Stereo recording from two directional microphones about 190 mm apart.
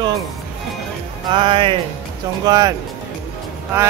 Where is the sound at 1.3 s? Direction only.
25° right (ahead or behind).